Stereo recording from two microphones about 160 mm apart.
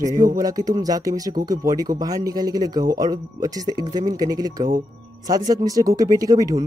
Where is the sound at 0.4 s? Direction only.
25° right (ahead or behind).